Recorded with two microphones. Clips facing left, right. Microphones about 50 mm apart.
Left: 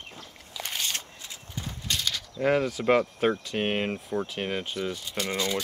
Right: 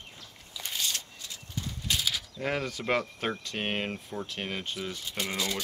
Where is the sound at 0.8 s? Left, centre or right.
Left.